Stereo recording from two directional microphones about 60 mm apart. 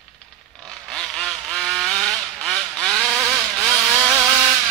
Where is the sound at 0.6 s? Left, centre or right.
Centre.